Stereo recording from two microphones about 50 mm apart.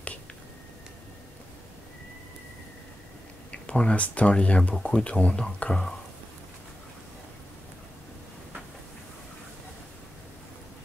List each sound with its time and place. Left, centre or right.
3.6 s speech: left